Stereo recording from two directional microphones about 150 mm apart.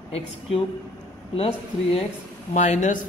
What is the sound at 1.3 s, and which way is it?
Speech, 40° left (ahead or behind).